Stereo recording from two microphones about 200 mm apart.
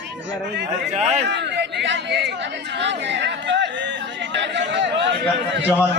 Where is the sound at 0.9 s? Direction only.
35° right (ahead or behind).